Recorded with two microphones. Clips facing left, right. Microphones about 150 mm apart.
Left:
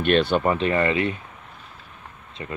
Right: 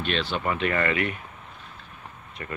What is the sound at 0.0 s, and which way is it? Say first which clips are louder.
Speech: left 9 dB; 55° left (ahead or behind).